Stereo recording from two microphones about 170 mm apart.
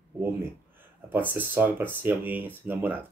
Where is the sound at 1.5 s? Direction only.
10° right (ahead or behind).